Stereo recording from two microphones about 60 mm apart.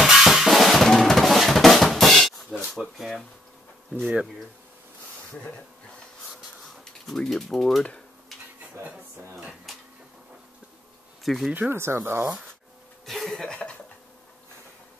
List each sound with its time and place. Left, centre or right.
0.0 s drum: centre
2.7 s speech: centre
6.8 s speech: centre
11.2 s speech: centre
11.7 s speech: right
13.0 s cough: centre
13.5 s cough: centre